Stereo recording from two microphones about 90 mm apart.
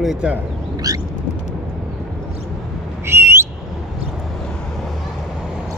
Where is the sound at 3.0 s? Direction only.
30° right (ahead or behind).